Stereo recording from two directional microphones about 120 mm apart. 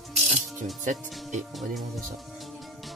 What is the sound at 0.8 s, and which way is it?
Speech, 85° right.